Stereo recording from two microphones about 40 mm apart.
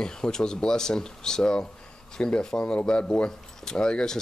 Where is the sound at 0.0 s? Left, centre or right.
Centre.